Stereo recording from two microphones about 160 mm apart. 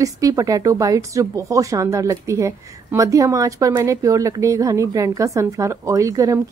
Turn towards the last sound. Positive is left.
turn(degrees=-20)  # may be behind; listen again after turning